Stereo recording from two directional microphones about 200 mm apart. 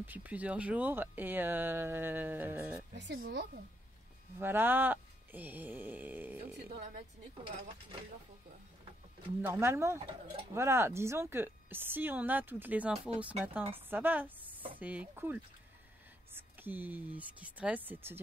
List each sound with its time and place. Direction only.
0.0 s speech: 10° right (ahead or behind)
3.0 s speech: 55° right (ahead or behind)
4.4 s speech: 10° right (ahead or behind)
6.7 s speech: 25° right (ahead or behind)
9.4 s speech: 10° right (ahead or behind)